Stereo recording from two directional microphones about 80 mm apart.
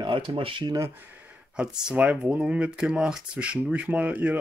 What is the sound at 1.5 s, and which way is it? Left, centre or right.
Speech, centre.